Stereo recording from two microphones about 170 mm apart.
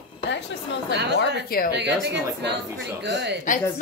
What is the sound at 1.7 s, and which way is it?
A man's voice, 80° right.